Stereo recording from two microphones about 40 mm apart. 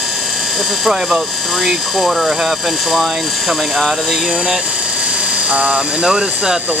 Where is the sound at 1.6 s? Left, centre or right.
Centre.